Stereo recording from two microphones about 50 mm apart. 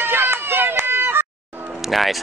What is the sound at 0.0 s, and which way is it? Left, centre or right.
Run, right.